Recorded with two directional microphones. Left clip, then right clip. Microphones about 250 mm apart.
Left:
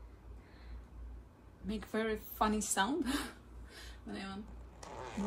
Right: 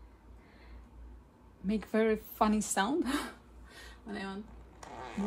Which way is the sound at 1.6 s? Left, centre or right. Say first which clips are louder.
Right 7 dB; right.